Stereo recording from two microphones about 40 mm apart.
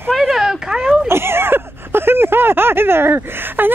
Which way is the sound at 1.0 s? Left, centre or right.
Right.